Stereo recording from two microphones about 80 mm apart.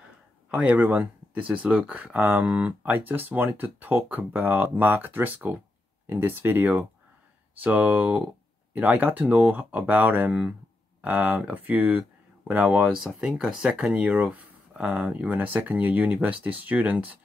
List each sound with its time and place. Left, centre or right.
0.5 s speech: centre